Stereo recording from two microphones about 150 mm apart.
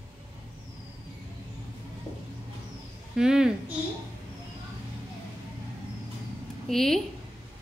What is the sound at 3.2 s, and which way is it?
Speech, 5° right (ahead or behind).